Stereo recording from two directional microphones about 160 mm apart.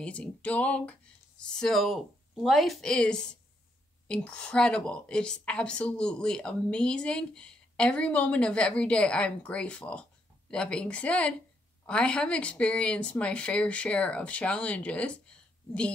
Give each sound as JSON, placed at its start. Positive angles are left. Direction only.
{"t": 0.0, "sound": "a woman's voice", "side_deg": 10}